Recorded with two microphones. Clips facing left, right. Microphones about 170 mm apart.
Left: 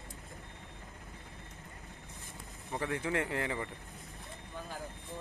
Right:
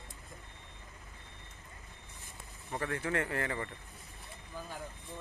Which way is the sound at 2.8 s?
15° left (ahead or behind).